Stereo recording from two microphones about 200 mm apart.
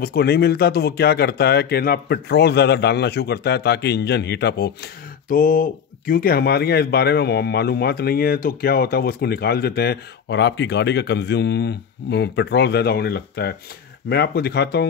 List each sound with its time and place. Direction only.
0.0 s speech: 50° left (ahead or behind)
5.3 s speech: 45° left (ahead or behind)